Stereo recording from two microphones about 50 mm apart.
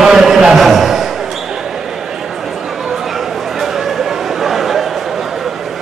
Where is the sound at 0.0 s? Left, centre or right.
Centre.